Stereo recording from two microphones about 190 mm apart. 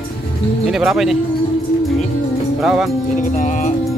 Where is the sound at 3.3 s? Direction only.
40° left (ahead or behind).